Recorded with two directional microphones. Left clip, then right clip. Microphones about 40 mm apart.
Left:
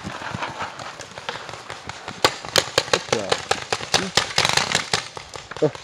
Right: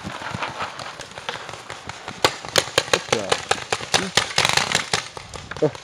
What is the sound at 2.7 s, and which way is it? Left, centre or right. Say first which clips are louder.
Engine: right 1 dB; right.